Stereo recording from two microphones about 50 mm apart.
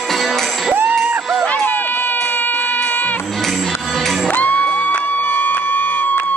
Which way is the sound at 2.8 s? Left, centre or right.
Left.